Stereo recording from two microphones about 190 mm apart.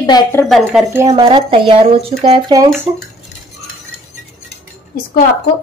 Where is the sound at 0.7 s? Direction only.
10° right (ahead or behind).